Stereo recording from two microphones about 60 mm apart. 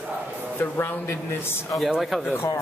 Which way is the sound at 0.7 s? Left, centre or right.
Left.